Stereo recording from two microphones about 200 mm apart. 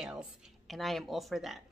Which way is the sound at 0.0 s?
5° right (ahead or behind).